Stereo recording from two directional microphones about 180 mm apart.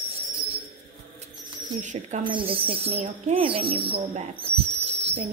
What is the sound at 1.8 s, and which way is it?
Speech, 45° right (ahead or behind).